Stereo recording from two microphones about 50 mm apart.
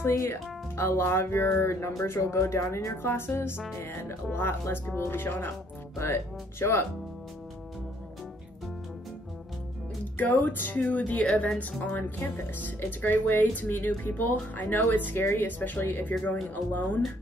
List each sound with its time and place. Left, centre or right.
0.1 s speech: left
5.9 s speech: left
10.4 s speech: left
12.5 s speech: left